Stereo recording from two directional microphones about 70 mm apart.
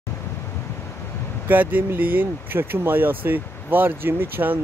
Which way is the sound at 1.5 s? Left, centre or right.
Right.